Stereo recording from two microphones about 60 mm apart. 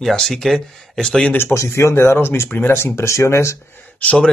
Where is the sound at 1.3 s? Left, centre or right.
Left.